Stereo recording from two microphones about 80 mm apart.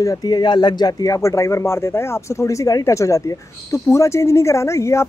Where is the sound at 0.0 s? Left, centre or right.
Left.